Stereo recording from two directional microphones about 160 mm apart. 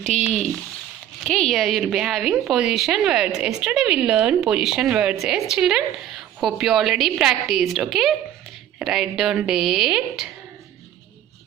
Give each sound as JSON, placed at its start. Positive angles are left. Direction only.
{"t": 0.0, "sound": "a woman's voice", "side_deg": 0}